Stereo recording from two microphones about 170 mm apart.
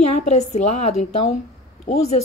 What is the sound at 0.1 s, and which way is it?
A woman's voice, 40° left (ahead or behind).